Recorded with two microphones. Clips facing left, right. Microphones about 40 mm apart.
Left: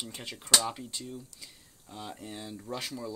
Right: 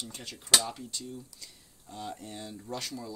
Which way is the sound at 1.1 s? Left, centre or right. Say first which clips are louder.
Left 1 dB; centre.